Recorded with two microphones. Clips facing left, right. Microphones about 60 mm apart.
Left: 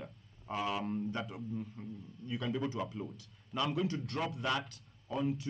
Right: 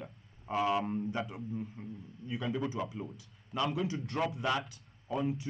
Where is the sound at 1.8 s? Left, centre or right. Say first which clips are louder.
Right 1 dB; right.